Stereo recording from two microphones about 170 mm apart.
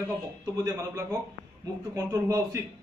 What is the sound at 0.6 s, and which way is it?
Speech, 20° right (ahead or behind).